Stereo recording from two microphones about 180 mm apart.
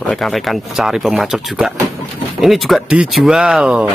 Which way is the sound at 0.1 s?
Centre (ahead or behind).